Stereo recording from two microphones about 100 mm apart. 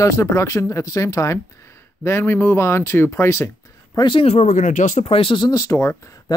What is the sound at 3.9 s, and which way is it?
Speech, 50° left (ahead or behind).